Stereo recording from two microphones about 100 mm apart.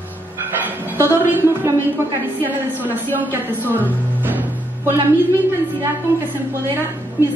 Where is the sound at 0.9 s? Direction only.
20° right (ahead or behind).